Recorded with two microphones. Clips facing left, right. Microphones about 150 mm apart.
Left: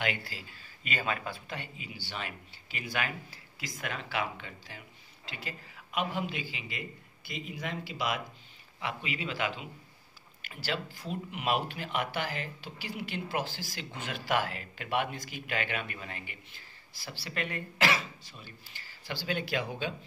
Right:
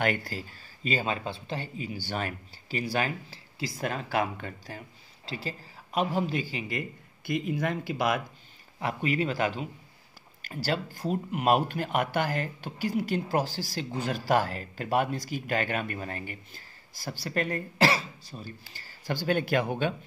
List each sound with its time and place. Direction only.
0.0 s speech: 45° right (ahead or behind)
0.8 s speech: 30° right (ahead or behind); by 19.9 s 55° right (ahead or behind)